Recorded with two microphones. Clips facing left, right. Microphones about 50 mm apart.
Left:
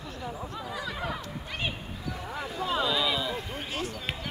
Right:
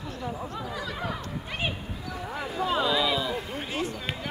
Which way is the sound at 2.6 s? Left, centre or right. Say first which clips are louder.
Right 2 dB; centre.